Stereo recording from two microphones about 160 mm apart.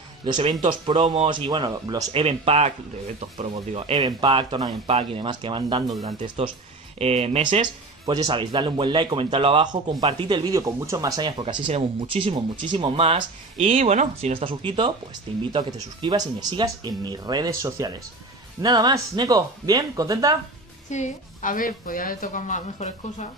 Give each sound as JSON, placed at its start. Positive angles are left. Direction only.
{"t": 0.2, "sound": "speech", "side_deg": -30}
{"t": 1.0, "sound": "speech", "side_deg": -40}
{"t": 1.3, "sound": "speech", "side_deg": -30}
{"t": 2.1, "sound": "speech", "side_deg": -40}
{"t": 4.8, "sound": "speech", "side_deg": -40}
{"t": 15.5, "sound": "speech", "side_deg": -30}
{"t": 20.9, "sound": "a woman's voice", "side_deg": 50}